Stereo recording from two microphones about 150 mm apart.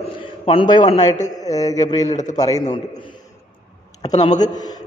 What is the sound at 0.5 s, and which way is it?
A man's voice, 30° left (ahead or behind).